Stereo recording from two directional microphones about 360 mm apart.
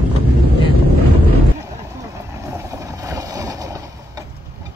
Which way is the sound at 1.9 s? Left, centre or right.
Centre.